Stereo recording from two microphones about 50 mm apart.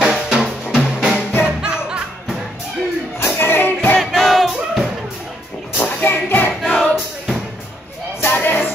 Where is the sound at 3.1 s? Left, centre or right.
Left.